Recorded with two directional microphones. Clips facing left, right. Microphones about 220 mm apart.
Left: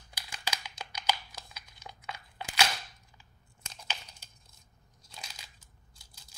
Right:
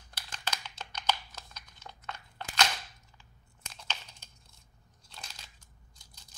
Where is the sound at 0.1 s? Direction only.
10° left (ahead or behind).